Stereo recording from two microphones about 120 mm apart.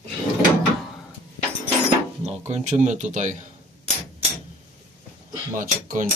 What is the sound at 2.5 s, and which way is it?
Speech, 75° right (ahead or behind).